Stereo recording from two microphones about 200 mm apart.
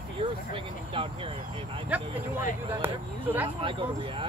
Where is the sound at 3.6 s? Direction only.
25° right (ahead or behind).